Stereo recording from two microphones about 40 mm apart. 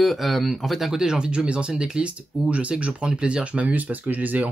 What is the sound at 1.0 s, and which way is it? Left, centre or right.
Speech, right.